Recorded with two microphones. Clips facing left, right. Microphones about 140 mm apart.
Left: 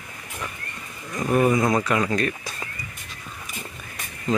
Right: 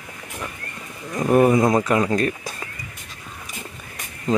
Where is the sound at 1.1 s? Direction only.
25° right (ahead or behind).